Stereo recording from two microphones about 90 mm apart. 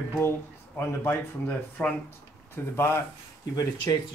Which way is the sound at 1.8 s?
20° left (ahead or behind).